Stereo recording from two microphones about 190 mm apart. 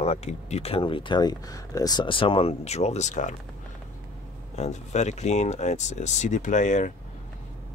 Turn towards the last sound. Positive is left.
turn(degrees=40)  # may be behind; listen again after turning